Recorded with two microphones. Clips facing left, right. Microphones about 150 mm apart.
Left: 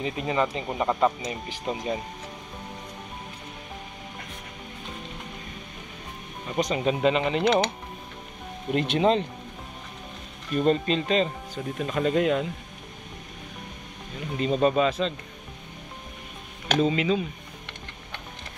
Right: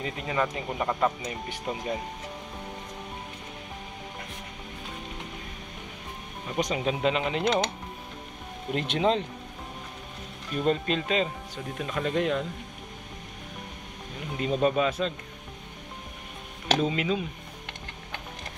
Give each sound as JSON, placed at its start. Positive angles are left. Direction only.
{"t": 0.0, "sound": "speech", "side_deg": 20}
{"t": 6.7, "sound": "speech", "side_deg": 0}
{"t": 8.7, "sound": "speech", "side_deg": 0}
{"t": 10.5, "sound": "speech", "side_deg": 0}
{"t": 14.3, "sound": "speech", "side_deg": -5}
{"t": 16.7, "sound": "speech", "side_deg": -5}